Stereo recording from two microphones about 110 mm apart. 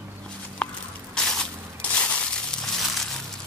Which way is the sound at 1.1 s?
5° left (ahead or behind).